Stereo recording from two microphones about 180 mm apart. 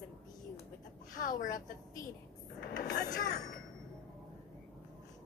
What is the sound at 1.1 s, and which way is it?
Speech, 50° left (ahead or behind).